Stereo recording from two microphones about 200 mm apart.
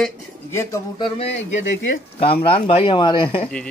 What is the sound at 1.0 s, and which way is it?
Speech, 30° left (ahead or behind).